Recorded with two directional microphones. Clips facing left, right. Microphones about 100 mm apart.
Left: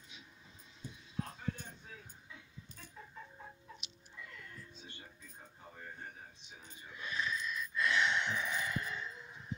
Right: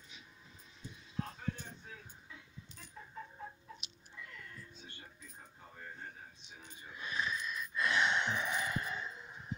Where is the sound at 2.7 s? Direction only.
45° left (ahead or behind).